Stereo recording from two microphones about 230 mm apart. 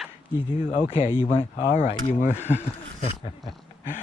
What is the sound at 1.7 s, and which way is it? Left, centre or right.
Speech, left.